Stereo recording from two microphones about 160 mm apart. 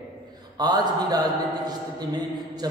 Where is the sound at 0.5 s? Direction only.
25° right (ahead or behind).